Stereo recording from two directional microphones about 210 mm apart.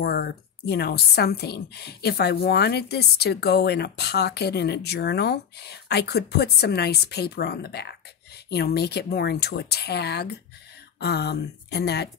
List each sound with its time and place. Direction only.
0.0 s a woman's voice: 50° left (ahead or behind)